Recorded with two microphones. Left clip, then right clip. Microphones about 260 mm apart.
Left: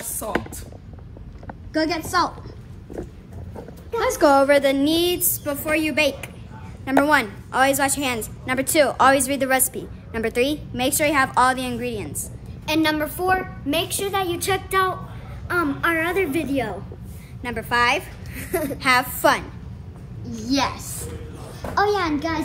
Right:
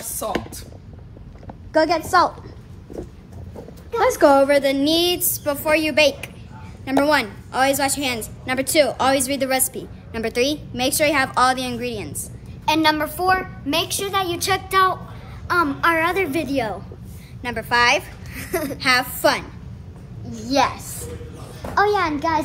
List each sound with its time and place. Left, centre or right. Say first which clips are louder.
0.2 s a woman's voice: right 1 dB; centre
1.7 s a woman's voice: right 6 dB; centre
4.2 s a woman's voice: even; left
4.6 s a woman's voice: even; centre
4.9 s a woman's voice: right 2 dB; centre
7.1 s a woman's voice: even; centre
12.6 s a child's voice: right 3 dB; centre
17.4 s a woman's voice: right 2 dB; centre
18.3 s a sound: even; centre
18.8 s a woman's voice: even; centre
20.5 s a woman's voice: right 4 dB; centre